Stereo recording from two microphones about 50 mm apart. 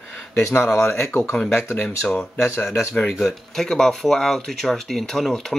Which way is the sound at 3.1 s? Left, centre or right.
Centre.